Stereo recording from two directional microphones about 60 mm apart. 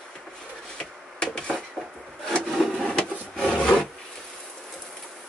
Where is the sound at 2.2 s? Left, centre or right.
Centre.